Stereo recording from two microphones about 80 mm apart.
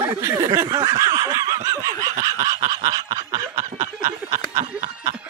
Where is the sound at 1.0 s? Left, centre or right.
Right.